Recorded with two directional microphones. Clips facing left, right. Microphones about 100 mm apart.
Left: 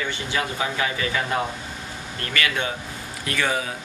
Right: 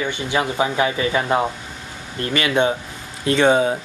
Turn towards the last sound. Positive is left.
turn(degrees=-25)  # may be behind; listen again after turning